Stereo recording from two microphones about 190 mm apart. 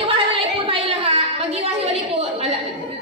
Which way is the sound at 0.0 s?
30° right (ahead or behind).